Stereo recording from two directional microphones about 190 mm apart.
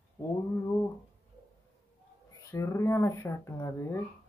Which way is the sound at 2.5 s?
15° left (ahead or behind).